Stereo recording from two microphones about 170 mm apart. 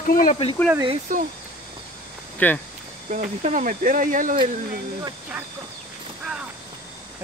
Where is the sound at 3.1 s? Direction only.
45° right (ahead or behind).